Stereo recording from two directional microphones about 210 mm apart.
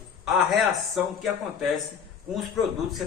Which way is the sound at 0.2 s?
Centre (ahead or behind).